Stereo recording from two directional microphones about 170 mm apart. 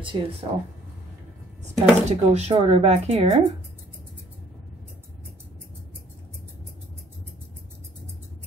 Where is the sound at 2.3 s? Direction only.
35° right (ahead or behind).